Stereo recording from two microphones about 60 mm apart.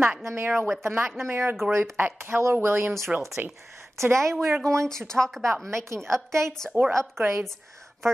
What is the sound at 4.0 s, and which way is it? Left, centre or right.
Speech, right.